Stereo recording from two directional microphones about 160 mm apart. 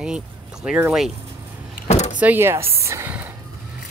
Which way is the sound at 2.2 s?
15° right (ahead or behind).